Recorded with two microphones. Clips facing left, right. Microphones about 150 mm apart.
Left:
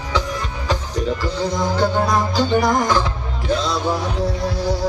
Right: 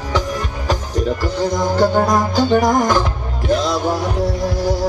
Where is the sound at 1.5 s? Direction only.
45° right (ahead or behind).